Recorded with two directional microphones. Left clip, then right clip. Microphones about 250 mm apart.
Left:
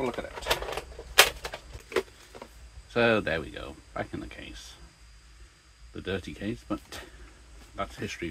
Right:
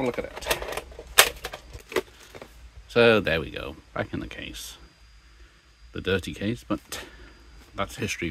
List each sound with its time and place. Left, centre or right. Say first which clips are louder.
0.4 s typewriter: right 1 dB; right
2.9 s speech: right 5 dB; right
5.9 s speech: right 7 dB; right